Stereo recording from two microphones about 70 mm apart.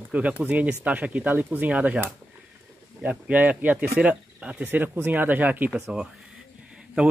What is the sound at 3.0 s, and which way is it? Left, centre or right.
Speech, right.